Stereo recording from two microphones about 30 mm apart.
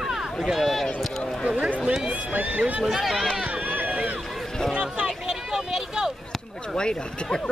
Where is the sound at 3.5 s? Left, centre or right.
Right.